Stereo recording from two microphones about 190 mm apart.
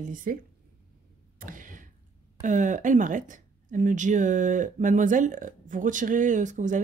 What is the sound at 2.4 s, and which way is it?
Speech, 40° right (ahead or behind).